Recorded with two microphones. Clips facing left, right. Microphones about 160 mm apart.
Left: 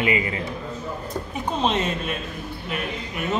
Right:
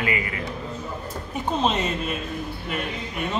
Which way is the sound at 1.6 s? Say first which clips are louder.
Left 1 dB; centre (ahead or behind).